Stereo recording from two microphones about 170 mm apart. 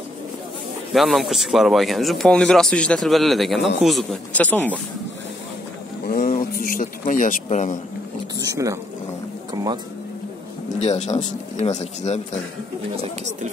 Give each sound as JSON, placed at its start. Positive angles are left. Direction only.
{"t": 0.9, "sound": "speech", "side_deg": 0}
{"t": 6.0, "sound": "speech", "side_deg": 55}
{"t": 8.4, "sound": "speech", "side_deg": -20}
{"t": 10.7, "sound": "speech", "side_deg": 40}
{"t": 12.9, "sound": "speech", "side_deg": -45}